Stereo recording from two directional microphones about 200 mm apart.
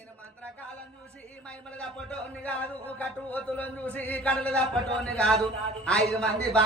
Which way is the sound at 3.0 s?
10° left (ahead or behind).